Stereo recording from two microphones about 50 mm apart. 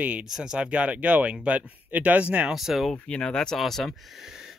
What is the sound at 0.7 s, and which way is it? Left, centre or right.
Speech, right.